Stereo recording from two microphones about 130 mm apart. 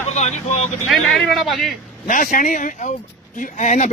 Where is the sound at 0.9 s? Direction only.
Centre (ahead or behind).